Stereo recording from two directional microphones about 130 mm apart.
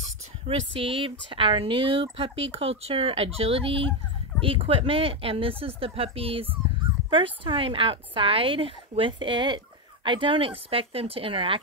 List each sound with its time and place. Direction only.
0.0 s speech: 50° right (ahead or behind)